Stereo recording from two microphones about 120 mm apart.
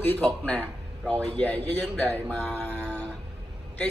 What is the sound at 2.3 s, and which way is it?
Mantra, 10° left (ahead or behind).